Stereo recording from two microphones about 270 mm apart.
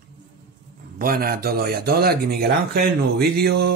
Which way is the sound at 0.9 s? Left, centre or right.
Right.